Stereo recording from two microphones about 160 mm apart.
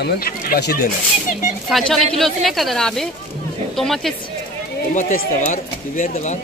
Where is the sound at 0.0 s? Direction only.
80° left.